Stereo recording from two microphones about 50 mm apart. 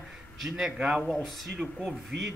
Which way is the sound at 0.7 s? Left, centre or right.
Right.